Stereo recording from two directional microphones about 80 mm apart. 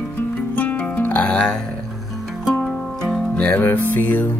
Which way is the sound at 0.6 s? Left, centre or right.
Left.